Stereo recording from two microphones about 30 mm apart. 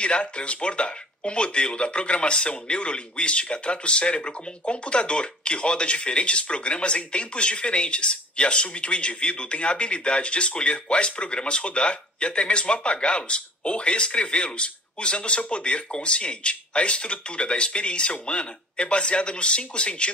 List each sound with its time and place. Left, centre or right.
0.0 s speech: left